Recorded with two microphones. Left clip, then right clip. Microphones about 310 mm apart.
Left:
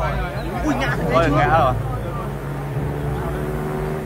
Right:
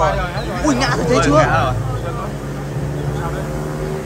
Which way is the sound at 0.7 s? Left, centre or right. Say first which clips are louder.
Right 5 dB; centre.